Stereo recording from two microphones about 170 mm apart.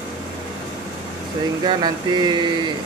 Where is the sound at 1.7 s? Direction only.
25° right (ahead or behind).